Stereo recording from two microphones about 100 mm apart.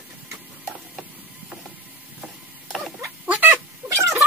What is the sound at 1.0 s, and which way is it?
Mechanisms, 15° right (ahead or behind).